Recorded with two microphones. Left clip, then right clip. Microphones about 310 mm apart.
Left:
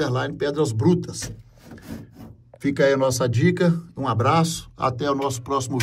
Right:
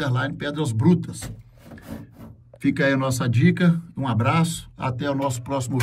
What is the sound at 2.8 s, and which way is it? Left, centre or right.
Speech, centre.